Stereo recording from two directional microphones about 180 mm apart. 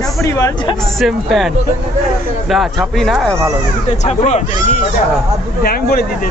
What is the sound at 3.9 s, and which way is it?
Speech, 40° left (ahead or behind).